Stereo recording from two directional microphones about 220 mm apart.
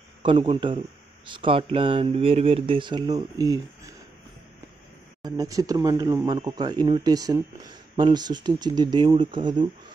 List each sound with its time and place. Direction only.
0.2 s speech: 25° right (ahead or behind)
5.2 s speech: 15° right (ahead or behind)